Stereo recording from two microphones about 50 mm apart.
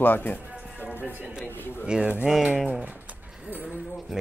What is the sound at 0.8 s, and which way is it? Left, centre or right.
Music, right.